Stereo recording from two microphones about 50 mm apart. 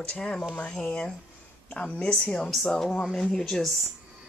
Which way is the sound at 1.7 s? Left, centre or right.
Left.